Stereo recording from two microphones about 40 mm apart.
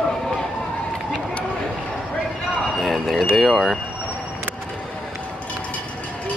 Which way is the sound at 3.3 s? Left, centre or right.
Centre.